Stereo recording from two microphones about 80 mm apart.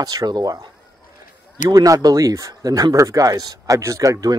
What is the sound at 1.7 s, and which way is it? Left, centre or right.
Speech, right.